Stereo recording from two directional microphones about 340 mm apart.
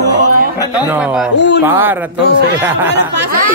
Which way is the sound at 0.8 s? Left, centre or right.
Centre.